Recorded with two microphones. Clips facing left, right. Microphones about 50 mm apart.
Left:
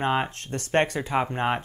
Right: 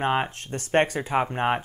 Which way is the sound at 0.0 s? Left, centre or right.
Centre.